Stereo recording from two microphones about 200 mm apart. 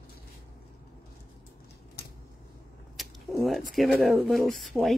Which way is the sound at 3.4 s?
Centre (ahead or behind).